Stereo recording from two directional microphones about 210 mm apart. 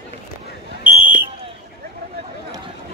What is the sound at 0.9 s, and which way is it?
Fire alarm, 10° right (ahead or behind).